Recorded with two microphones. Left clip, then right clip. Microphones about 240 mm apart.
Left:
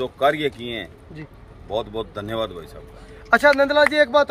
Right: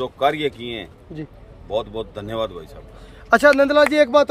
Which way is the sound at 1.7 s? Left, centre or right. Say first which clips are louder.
Right 1 dB; centre.